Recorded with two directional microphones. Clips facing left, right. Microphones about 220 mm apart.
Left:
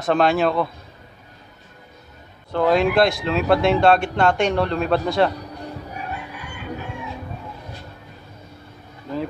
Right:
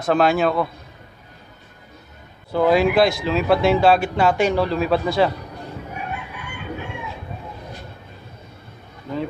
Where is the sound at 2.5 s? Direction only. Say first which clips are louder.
Right 1 dB; 5° right (ahead or behind).